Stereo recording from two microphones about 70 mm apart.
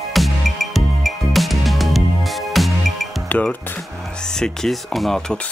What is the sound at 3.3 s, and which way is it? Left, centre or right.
Speech, left.